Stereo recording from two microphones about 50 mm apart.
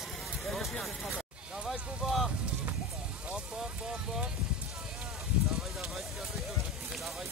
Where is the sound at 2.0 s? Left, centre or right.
Centre.